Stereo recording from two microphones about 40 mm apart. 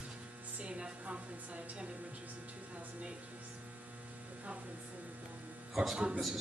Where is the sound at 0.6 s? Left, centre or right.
Right.